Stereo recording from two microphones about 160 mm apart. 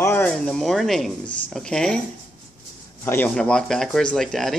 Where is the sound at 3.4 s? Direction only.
5° left (ahead or behind).